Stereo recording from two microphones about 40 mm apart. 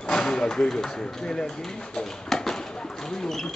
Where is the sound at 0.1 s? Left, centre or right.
Centre.